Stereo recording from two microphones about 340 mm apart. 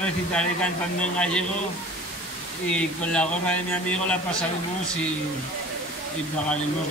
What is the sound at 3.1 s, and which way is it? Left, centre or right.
A man's voice, centre.